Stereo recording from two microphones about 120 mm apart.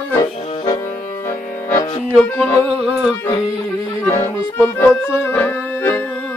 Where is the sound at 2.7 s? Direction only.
10° right (ahead or behind).